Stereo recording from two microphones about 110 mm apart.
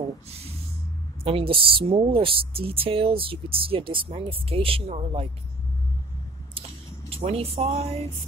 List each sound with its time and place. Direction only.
1.2 s a woman's voice: 55° right (ahead or behind)
7.1 s speech: 70° right (ahead or behind)